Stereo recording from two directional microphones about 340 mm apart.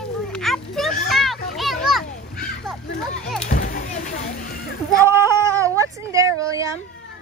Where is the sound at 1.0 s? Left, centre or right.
Centre.